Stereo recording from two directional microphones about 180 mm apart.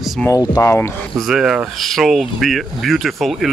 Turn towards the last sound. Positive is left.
turn(degrees=0)  # may be behind; listen again after turning